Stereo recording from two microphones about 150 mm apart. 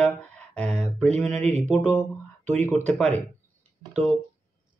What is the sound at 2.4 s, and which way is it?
Speech, 10° left (ahead or behind).